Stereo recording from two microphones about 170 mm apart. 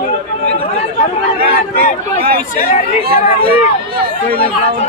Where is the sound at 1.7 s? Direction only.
60° right (ahead or behind).